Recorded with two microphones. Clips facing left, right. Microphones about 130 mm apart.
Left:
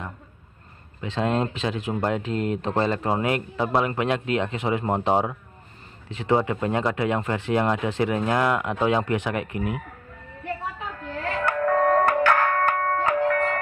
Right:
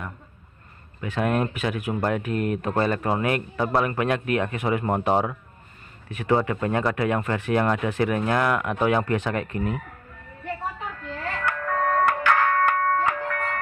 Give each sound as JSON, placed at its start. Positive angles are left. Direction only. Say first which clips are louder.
{"t": 1.0, "sound": "speech", "louder": "even", "side_deg": 25}
{"t": 11.4, "sound": "music", "louder": "left 5 dB", "side_deg": 40}